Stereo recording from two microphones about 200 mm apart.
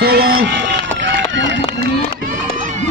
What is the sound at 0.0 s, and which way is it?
Run, 50° right (ahead or behind).